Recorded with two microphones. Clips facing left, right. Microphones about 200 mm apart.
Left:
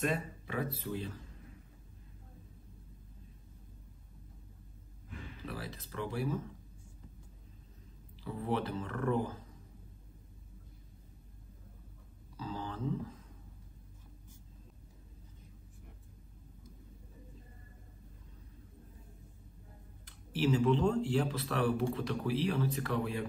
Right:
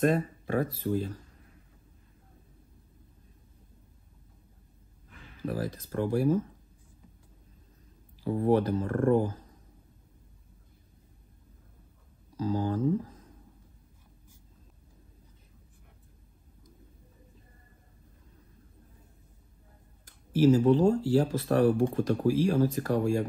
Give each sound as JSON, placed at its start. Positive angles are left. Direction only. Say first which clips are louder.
{"t": 0.0, "sound": "speech", "louder": "right 9 dB", "side_deg": -50}
{"t": 5.4, "sound": "speech", "louder": "right 12 dB", "side_deg": -45}
{"t": 8.2, "sound": "speech", "louder": "right 10 dB", "side_deg": -50}
{"t": 12.4, "sound": "speech", "louder": "right 11 dB", "side_deg": -45}
{"t": 20.1, "sound": "speech", "louder": "right 9 dB", "side_deg": -45}